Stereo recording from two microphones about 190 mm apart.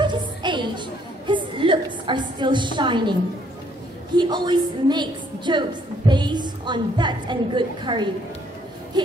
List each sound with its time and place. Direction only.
0.0 s chatter: 25° right (ahead or behind)
4.2 s a woman's voice: 25° right (ahead or behind)
9.0 s a sound: 20° right (ahead or behind)